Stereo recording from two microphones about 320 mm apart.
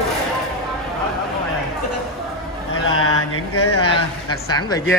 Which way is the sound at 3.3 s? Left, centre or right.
Left.